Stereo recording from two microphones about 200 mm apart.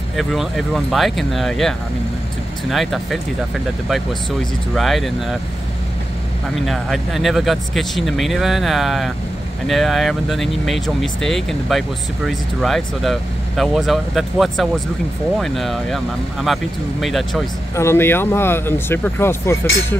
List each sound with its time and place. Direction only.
0.1 s speech: centre (ahead or behind)
4.7 s speech: centre (ahead or behind)
6.5 s speech: centre (ahead or behind)
17.7 s speech: 10° left (ahead or behind)